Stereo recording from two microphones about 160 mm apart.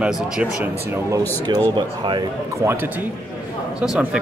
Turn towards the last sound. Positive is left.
turn(degrees=-5)  # may be behind; listen again after turning